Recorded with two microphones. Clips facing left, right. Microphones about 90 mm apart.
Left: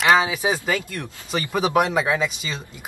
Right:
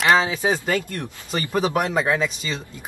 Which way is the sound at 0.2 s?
15° left (ahead or behind).